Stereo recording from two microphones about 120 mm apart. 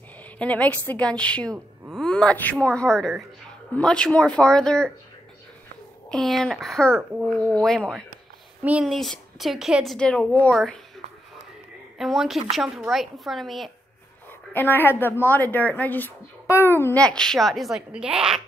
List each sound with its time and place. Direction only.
0.4 s a woman's voice: 10° left (ahead or behind)
6.0 s a woman's voice: 5° left (ahead or behind)
9.9 s a woman's voice: 10° left (ahead or behind)
12.0 s a woman's voice: centre (ahead or behind)
14.5 s a woman's voice: 15° left (ahead or behind)
17.0 s a woman's voice: 5° left (ahead or behind)